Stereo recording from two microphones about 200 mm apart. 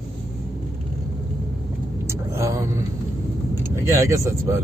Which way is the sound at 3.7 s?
15° right (ahead or behind).